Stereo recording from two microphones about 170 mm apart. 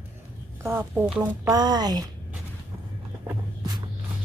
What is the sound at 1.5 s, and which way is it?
Speech, 25° right (ahead or behind).